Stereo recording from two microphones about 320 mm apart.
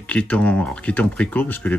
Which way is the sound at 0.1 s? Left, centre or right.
Centre.